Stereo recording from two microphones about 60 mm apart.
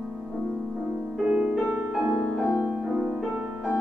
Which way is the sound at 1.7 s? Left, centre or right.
Right.